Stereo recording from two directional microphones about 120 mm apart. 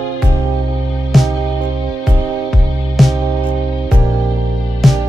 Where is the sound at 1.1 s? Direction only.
Centre (ahead or behind).